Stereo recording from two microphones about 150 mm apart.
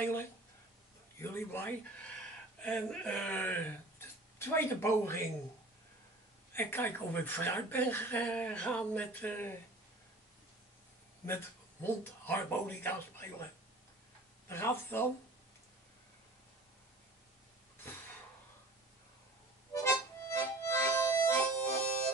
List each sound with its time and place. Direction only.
0.0 s a sound: 15° left (ahead or behind)
1.2 s speech: 15° left (ahead or behind)
6.5 s speech: 15° left (ahead or behind)
11.2 s speech: 15° left (ahead or behind)
14.5 s speech: 15° left (ahead or behind)
19.7 s music: 20° left (ahead or behind)